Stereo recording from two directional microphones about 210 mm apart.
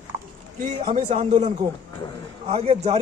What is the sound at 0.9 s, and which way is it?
Speech, 35° right (ahead or behind).